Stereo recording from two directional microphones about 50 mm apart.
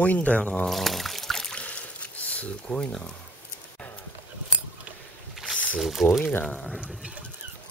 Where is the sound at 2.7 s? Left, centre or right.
Centre.